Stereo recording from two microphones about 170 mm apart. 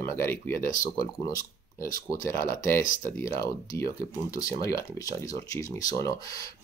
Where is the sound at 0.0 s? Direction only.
15° left (ahead or behind).